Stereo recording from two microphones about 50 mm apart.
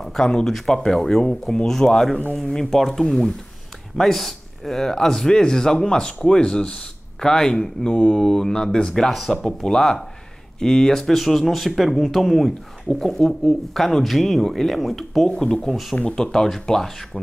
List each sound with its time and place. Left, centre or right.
0.0 s speech: centre
7.9 s speech: left
8.2 s speech: centre
16.0 s speech: centre
16.4 s speech: centre